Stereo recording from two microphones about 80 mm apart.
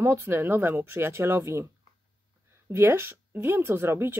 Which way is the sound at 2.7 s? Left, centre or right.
Right.